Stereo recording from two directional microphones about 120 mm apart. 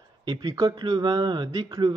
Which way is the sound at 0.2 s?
35° right (ahead or behind).